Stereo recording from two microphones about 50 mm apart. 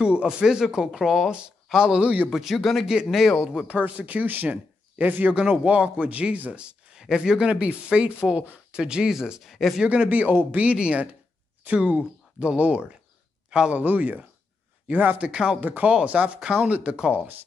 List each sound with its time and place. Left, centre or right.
0.0 s speech: right; by 1.3 s centre
1.7 s speech: centre
2.0 s speech: right
2.2 s speech: centre
3.6 s speech: right
7.0 s speech: centre
9.5 s speech: centre
10.0 s speech: right
13.7 s speech: right; by 15.6 s centre
15.6 s speech: right
16.9 s speech: centre